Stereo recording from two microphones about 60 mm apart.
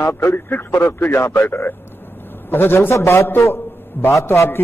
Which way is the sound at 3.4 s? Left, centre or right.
Left.